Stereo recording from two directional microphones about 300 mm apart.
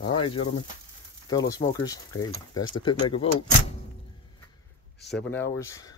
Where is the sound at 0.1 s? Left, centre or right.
Centre.